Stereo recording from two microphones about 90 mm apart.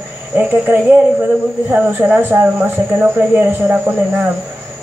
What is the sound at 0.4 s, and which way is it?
Speech, 15° right (ahead or behind).